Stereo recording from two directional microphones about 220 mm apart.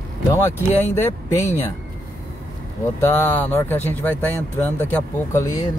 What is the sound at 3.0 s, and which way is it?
Speech, 10° left (ahead or behind).